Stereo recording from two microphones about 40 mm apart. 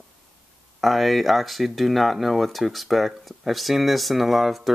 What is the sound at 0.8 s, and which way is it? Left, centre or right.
Speech, centre.